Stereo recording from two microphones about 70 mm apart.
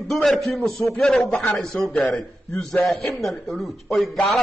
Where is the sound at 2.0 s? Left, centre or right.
Centre.